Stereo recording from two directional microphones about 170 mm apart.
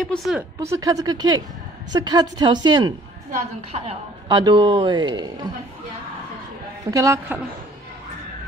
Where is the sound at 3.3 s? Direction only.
40° right (ahead or behind).